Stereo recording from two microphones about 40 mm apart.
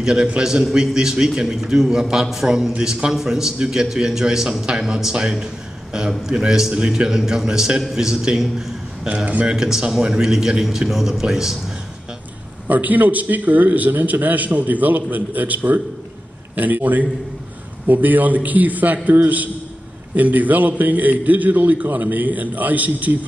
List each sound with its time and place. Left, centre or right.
0.0 s a man's voice: right
6.7 s a man's voice: right
9.0 s a man's voice: right
9.5 s a man's voice: centre
12.6 s a man's voice: right